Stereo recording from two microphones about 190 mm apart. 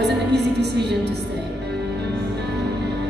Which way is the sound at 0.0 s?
60° right (ahead or behind).